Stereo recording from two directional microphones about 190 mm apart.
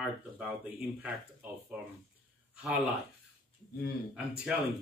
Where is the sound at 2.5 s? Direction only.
5° right (ahead or behind).